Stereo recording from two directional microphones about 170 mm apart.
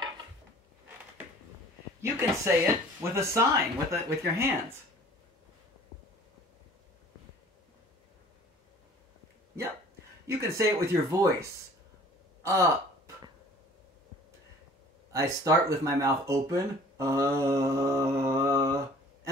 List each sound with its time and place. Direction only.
2.0 s speech: 15° right (ahead or behind)
10.2 s speech: 15° right (ahead or behind)
12.4 s gasp: 20° right (ahead or behind)
15.1 s speech: 20° right (ahead or behind)